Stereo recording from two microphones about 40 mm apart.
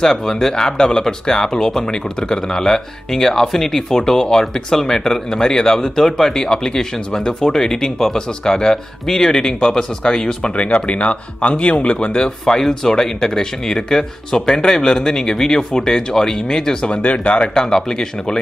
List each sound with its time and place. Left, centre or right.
0.0 s speech: centre
10.5 s speech: left
12.2 s speech: centre
16.8 s speech: left
17.4 s speech: centre